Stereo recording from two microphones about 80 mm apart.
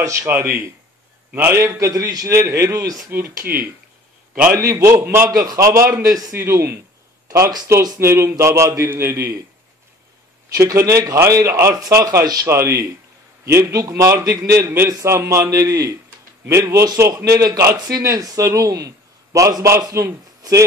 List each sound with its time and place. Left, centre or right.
0.0 s a man's voice: right
0.3 s a man's voice: right
1.6 s a man's voice: right
3.1 s speech: right
4.5 s a man's voice: right
7.2 s a man's voice: right
10.5 s a man's voice: right